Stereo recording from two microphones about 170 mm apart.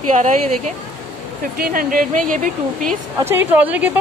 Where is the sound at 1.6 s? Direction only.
60° right (ahead or behind).